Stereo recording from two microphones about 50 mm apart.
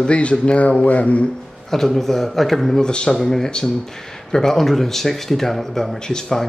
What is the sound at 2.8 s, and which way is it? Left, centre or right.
A man's voice, centre.